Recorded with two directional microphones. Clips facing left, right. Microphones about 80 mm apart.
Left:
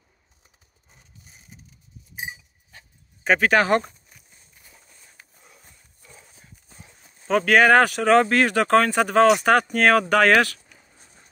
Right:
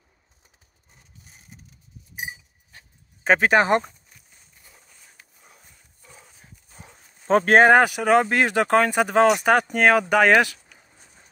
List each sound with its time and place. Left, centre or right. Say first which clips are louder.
3.3 s speech: right 1 dB; right
7.2 s speech: right 2 dB; right
7.7 s speech: even; centre